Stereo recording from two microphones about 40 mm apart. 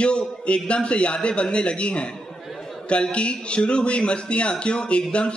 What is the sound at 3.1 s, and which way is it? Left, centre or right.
Speech, left.